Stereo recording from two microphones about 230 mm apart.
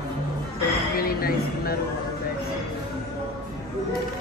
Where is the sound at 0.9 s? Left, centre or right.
Left.